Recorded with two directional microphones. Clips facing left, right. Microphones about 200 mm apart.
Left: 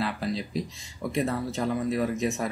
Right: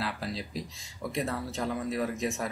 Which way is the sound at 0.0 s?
Centre (ahead or behind).